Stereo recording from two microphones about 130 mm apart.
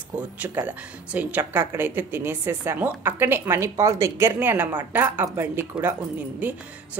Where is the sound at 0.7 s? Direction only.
10° right (ahead or behind).